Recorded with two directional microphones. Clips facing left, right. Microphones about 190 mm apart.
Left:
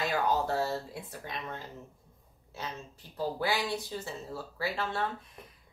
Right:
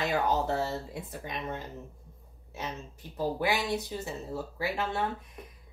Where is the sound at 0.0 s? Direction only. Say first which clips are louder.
Right 1 dB; 20° right (ahead or behind).